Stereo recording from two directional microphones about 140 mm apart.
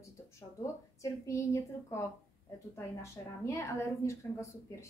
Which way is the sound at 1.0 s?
20° left (ahead or behind).